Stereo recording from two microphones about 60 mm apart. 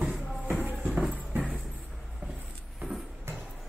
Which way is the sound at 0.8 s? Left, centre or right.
Centre.